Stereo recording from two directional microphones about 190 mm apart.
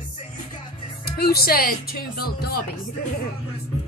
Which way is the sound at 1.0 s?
55° left (ahead or behind).